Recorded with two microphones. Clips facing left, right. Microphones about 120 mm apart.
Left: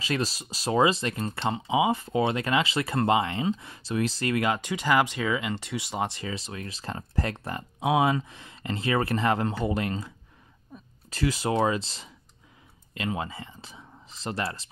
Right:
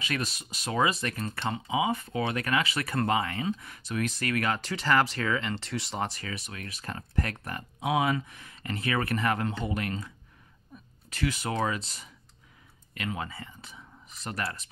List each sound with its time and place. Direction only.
0.0 s speech: 30° left (ahead or behind); by 5.7 s 10° left (ahead or behind)
6.0 s speech: 25° left (ahead or behind)